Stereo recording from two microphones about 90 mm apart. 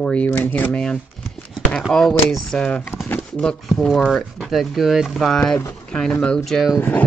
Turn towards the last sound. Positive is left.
turn(degrees=0)  # may be behind; listen again after turning